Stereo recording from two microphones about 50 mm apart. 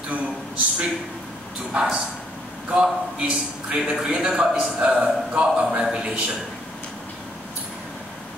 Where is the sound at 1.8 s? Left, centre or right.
Centre.